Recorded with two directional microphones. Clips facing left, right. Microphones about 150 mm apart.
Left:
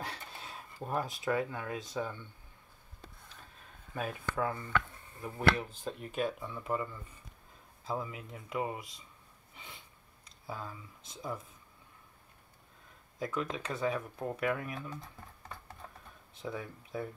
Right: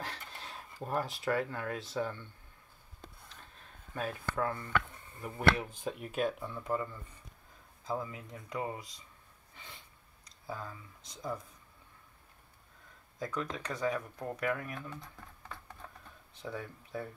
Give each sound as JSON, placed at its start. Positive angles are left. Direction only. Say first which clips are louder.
{"t": 0.1, "sound": "a sound", "louder": "left 1 dB", "side_deg": 5}
{"t": 0.8, "sound": "speech", "louder": "even", "side_deg": 0}
{"t": 1.4, "sound": "speech", "louder": "even", "side_deg": 15}
{"t": 1.7, "sound": "speech", "louder": "right 1 dB", "side_deg": 0}
{"t": 2.0, "sound": "speech", "louder": "right 2 dB", "side_deg": 10}
{"t": 3.9, "sound": "speech", "louder": "even", "side_deg": 15}
{"t": 5.2, "sound": "speech", "louder": "even", "side_deg": -10}
{"t": 7.9, "sound": "speech", "louder": "even", "side_deg": 20}
{"t": 10.4, "sound": "speech", "louder": "even", "side_deg": 15}
{"t": 13.2, "sound": "speech", "louder": "left 2 dB", "side_deg": 20}
{"t": 16.4, "sound": "speech", "louder": "left 1 dB", "side_deg": 15}